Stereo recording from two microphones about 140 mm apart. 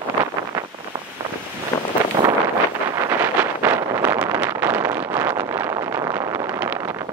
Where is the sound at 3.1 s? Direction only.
15° right (ahead or behind).